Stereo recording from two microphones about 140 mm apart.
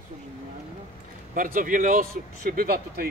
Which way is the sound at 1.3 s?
80° right.